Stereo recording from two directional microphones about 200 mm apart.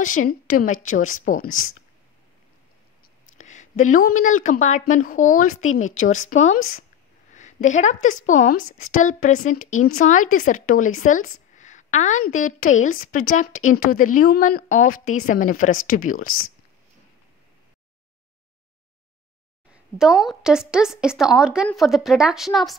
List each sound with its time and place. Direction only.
0.2 s a woman's voice: 45° left (ahead or behind)
1.5 s speech: 90° left
3.3 s a woman's voice: 40° left (ahead or behind)
5.5 s speech: 90° left
5.9 s a woman's voice: 35° left (ahead or behind)
9.6 s speech: 90° left
9.9 s a woman's voice: 40° left (ahead or behind)
15.7 s speech: 90° left
16.1 s a woman's voice: 40° left (ahead or behind)
19.7 s a woman's voice: 5° right (ahead or behind)